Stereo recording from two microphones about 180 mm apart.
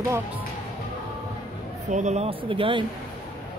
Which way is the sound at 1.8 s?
40° right (ahead or behind).